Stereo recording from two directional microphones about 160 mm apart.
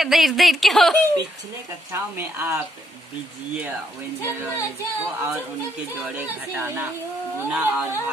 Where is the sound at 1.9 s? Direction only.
15° right (ahead or behind).